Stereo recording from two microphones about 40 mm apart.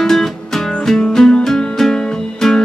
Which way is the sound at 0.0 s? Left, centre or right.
Centre.